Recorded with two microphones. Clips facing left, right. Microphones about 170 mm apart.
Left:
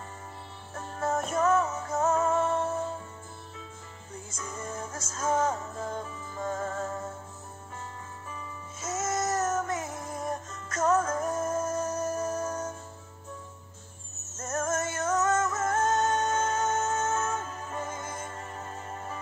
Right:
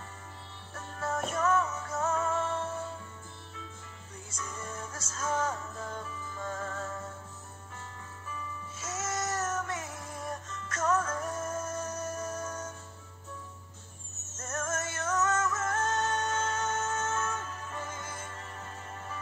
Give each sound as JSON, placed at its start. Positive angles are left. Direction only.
{"t": 0.7, "sound": "music", "side_deg": 35}
{"t": 4.4, "sound": "music", "side_deg": 45}
{"t": 8.3, "sound": "music", "side_deg": 40}
{"t": 14.4, "sound": "music", "side_deg": 40}